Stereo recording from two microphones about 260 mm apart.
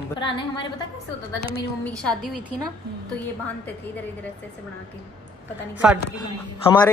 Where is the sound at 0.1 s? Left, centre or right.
Centre.